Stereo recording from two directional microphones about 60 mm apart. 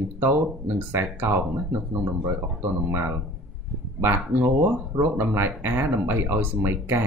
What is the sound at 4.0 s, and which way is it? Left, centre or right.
Speech, right.